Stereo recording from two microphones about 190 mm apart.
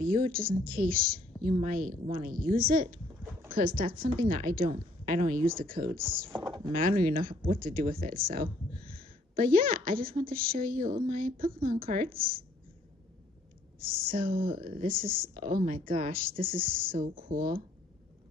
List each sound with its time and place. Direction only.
0.0 s a woman's voice: 50° right (ahead or behind)
6.3 s a sound: 25° right (ahead or behind)
6.8 s a woman's voice: 45° right (ahead or behind)
13.7 s a woman's voice: 50° right (ahead or behind)